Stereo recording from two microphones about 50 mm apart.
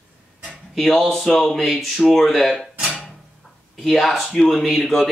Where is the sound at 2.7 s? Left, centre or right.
Centre.